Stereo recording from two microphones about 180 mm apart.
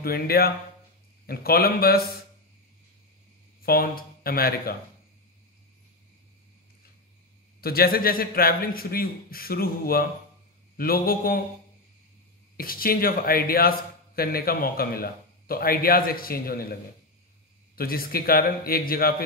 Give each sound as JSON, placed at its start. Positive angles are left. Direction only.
{"t": 0.0, "sound": "a man's voice", "side_deg": 55}
{"t": 3.6, "sound": "a man's voice", "side_deg": 55}
{"t": 7.6, "sound": "a man's voice", "side_deg": 55}
{"t": 12.5, "sound": "a man's voice", "side_deg": 55}
{"t": 17.7, "sound": "a man's voice", "side_deg": 55}